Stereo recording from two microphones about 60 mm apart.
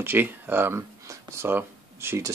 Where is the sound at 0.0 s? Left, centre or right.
Right.